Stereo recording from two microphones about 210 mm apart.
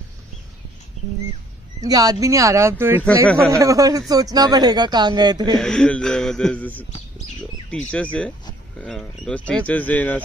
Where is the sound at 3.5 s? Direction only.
15° right (ahead or behind).